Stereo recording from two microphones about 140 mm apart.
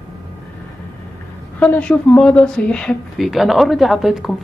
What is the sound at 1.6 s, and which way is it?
Speech, 10° left (ahead or behind).